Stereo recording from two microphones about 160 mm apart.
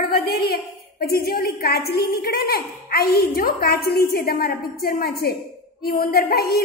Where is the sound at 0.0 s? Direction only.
70° left (ahead or behind).